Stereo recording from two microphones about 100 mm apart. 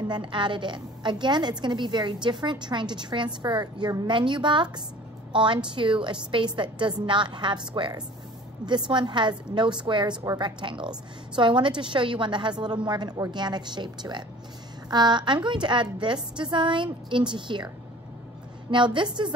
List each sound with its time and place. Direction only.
0.1 s a woman's voice: 55° right (ahead or behind)
18.9 s a woman's voice: 50° right (ahead or behind)